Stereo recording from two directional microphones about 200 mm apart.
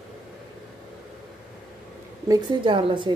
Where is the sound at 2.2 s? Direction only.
25° right (ahead or behind).